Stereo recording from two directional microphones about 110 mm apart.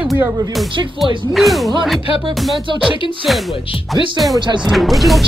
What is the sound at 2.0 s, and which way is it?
Music, 55° left (ahead or behind).